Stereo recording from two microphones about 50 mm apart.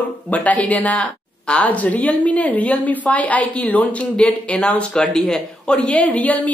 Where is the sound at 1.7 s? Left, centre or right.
Left.